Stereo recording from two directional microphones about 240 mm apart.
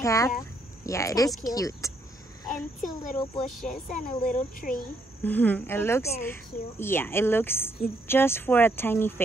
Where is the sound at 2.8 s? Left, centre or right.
Left.